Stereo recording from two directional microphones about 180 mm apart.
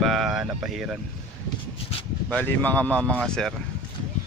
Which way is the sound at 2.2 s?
5° left (ahead or behind).